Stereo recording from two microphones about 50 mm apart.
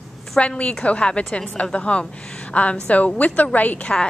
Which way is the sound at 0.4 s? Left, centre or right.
Left.